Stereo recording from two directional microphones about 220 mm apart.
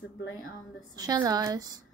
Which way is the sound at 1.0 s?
15° right (ahead or behind).